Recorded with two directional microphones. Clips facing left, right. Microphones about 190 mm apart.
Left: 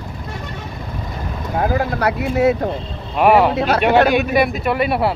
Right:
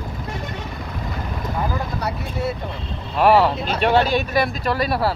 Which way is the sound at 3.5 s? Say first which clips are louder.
Left 8 dB; 70° left (ahead or behind).